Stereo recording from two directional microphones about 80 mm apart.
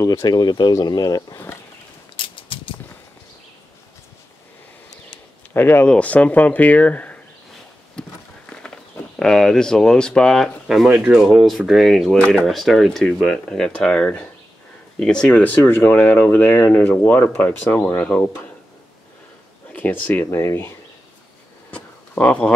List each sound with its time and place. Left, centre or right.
0.0 s speech: left
0.7 s speech: left
2.1 s a sound: left
5.5 s speech: left
5.9 s speech: centre
8.0 s horse: centre
9.2 s speech: centre
10.9 s speech: centre; by 18.5 s left
19.7 s speech: left
20.2 s speech: left
21.6 s a sound: centre